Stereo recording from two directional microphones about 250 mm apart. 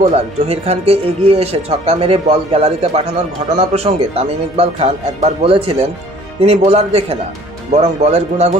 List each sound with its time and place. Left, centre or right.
0.0 s speech: right